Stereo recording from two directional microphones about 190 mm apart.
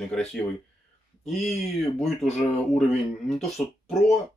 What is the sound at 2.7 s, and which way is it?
Speech, centre (ahead or behind).